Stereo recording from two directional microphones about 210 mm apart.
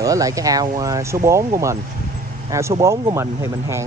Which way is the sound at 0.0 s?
15° right (ahead or behind).